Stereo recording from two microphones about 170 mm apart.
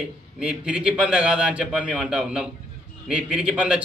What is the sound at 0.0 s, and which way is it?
A man's voice, 5° right (ahead or behind).